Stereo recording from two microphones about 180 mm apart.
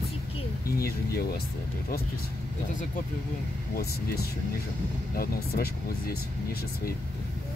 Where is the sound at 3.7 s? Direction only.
60° left (ahead or behind).